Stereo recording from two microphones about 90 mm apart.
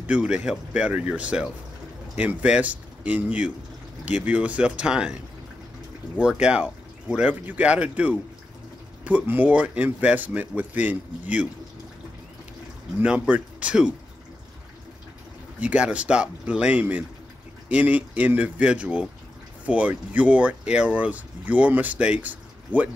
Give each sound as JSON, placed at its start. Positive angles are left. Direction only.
{"t": 0.0, "sound": "speech", "side_deg": -10}
{"t": 6.1, "sound": "speech", "side_deg": -10}
{"t": 13.0, "sound": "speech", "side_deg": -10}
{"t": 15.6, "sound": "speech", "side_deg": -15}